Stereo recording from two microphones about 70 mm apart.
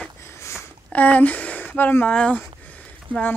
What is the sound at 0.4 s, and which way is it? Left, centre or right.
Sniff, left.